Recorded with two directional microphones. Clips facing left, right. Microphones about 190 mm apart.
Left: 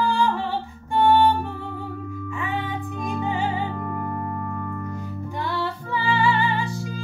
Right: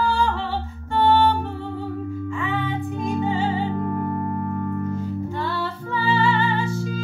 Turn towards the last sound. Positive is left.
turn(degrees=15)  # may be behind; listen again after turning